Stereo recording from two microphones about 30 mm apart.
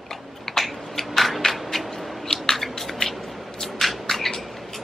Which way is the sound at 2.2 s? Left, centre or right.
Centre.